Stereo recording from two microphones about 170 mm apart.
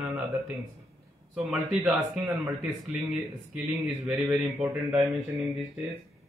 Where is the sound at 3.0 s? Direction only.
Centre (ahead or behind).